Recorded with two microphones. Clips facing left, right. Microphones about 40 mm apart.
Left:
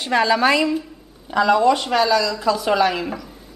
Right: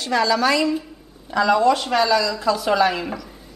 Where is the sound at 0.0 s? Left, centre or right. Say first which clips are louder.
Left 2 dB; left.